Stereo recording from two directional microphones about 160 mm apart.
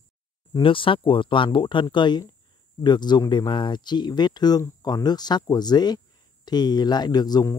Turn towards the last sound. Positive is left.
turn(degrees=20)  # may be behind; listen again after turning